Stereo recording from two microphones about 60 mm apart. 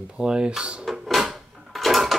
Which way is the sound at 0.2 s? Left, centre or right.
Centre.